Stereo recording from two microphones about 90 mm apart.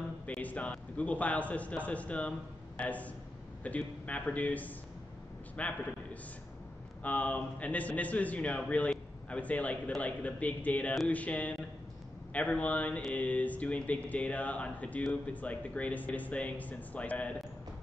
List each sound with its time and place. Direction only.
0.3 s a man's voice: 15° left (ahead or behind)
7.0 s a man's voice: 20° left (ahead or behind)